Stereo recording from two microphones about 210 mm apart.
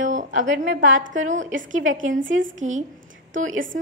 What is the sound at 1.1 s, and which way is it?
A woman's voice, 35° right (ahead or behind).